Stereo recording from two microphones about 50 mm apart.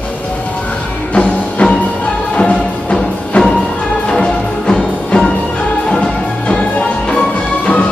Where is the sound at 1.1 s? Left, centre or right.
Left.